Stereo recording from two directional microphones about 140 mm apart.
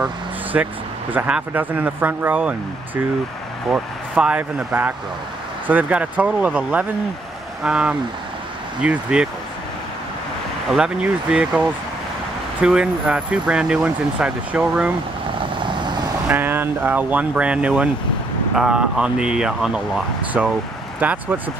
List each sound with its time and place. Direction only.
0.0 s vehicle: 10° right (ahead or behind)
1.1 s speech: 10° right (ahead or behind)
3.7 s speech: 10° right (ahead or behind)
10.7 s speech: 5° right (ahead or behind)
12.6 s speech: 5° right (ahead or behind)
15.6 s vehicle: 35° right (ahead or behind)
16.3 s speech: 15° right (ahead or behind)